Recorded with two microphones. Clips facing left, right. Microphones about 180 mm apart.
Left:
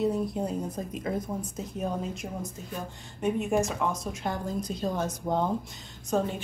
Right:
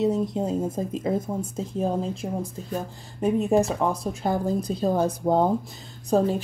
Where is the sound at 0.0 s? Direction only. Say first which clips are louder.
Right 4 dB; 20° right (ahead or behind).